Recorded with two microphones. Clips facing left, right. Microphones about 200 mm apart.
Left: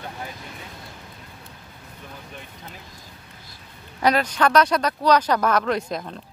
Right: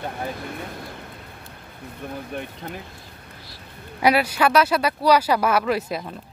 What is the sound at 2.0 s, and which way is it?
Speech, 55° right (ahead or behind).